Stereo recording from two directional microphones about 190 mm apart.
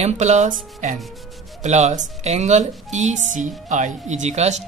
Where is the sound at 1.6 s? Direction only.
40° right (ahead or behind).